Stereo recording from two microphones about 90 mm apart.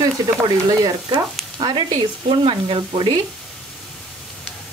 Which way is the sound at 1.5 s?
65° right (ahead or behind).